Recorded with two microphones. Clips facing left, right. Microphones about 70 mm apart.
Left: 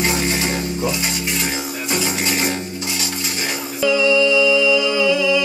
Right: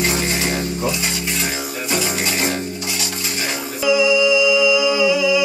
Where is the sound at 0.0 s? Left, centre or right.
Left.